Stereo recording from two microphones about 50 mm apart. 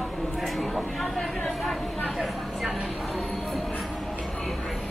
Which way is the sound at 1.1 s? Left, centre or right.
Centre.